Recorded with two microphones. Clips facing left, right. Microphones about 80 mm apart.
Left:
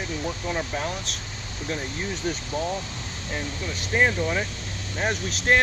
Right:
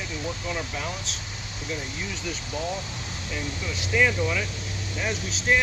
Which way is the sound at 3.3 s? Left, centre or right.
Left.